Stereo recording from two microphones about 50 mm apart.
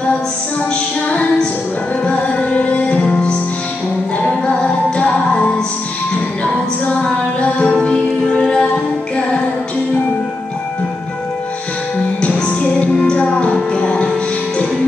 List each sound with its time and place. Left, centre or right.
2.0 s music: left
6.4 s music: left
13.1 s music: centre